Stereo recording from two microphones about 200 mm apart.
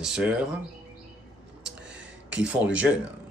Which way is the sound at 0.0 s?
5° right (ahead or behind).